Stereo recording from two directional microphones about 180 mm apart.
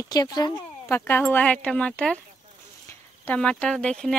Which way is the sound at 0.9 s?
10° left (ahead or behind).